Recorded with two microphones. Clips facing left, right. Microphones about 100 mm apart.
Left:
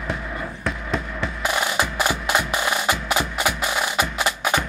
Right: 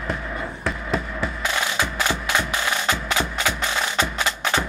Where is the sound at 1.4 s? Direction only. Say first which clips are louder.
Left 3 dB; 15° left (ahead or behind).